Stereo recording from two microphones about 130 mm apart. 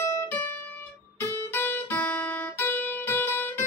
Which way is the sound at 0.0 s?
20° left (ahead or behind).